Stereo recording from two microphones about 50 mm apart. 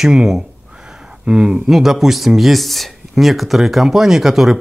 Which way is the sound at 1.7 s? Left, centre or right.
Centre.